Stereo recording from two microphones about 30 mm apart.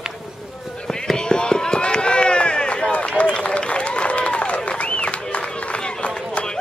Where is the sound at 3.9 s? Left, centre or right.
Left.